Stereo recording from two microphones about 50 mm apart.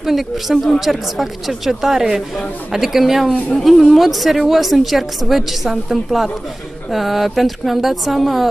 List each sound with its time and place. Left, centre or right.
0.0 s a woman's voice: centre